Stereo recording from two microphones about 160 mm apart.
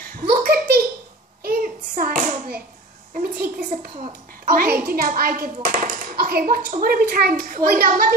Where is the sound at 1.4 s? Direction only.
65° right (ahead or behind).